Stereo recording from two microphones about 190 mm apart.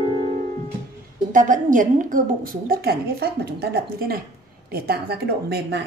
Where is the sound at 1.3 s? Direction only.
45° right (ahead or behind).